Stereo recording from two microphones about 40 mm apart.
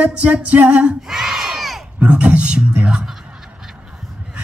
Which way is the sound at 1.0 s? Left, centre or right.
Centre.